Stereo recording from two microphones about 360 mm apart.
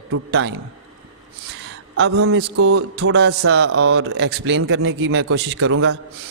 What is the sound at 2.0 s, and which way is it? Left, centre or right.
Speech, right.